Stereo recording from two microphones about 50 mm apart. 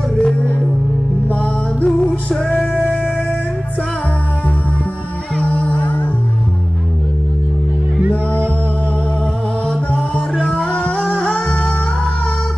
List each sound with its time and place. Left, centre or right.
0.2 s music: left
5.5 s music: left
8.0 s music: right
10.5 s music: left